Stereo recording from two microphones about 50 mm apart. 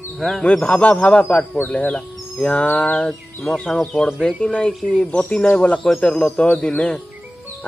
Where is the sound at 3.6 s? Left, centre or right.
Centre.